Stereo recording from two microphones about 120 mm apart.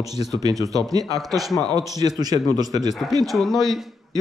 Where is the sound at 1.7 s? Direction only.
35° right (ahead or behind).